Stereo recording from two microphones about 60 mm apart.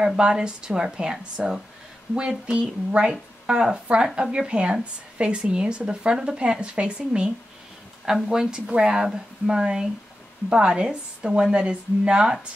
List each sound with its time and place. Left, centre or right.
0.0 s a woman's voice: centre
2.1 s a woman's voice: centre